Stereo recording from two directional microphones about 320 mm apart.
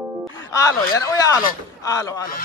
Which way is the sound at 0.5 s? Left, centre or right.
Centre.